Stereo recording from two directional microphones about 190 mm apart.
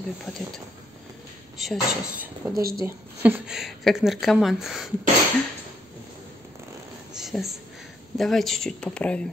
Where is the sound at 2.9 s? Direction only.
10° right (ahead or behind).